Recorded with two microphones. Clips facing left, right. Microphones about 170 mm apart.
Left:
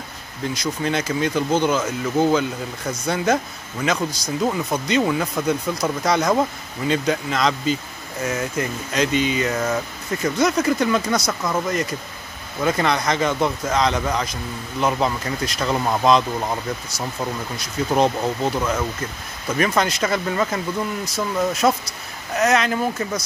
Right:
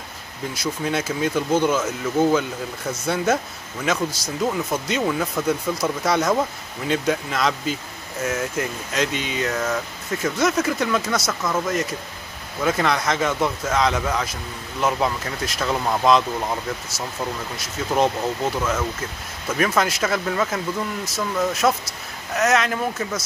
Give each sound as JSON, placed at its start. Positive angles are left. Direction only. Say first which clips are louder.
{"t": 0.6, "sound": "speech", "louder": "even", "side_deg": -5}
{"t": 4.5, "sound": "speech", "louder": "even", "side_deg": 15}
{"t": 5.0, "sound": "speech", "louder": "left 1 dB", "side_deg": 0}
{"t": 12.6, "sound": "speech", "louder": "left 1 dB", "side_deg": 0}